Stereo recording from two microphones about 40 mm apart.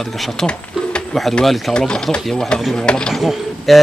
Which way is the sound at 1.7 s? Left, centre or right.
Left.